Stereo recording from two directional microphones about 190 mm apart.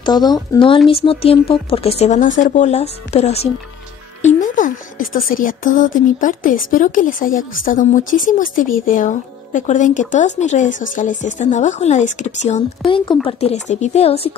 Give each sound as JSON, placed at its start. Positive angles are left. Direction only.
{"t": 0.0, "sound": "a woman's voice", "side_deg": 20}